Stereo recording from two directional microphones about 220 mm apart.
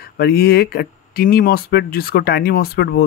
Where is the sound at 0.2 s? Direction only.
45° left (ahead or behind).